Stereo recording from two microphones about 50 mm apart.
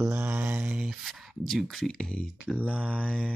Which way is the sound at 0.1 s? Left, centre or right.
Right.